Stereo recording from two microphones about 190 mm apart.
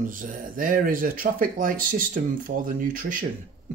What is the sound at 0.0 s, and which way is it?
Speech, 45° right (ahead or behind).